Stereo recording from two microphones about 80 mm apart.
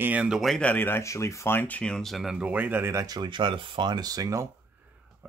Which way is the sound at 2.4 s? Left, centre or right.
Right.